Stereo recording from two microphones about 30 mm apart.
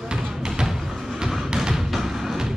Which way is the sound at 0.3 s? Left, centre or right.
Right.